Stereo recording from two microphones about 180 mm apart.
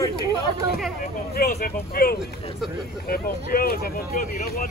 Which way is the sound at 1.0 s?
55° left (ahead or behind).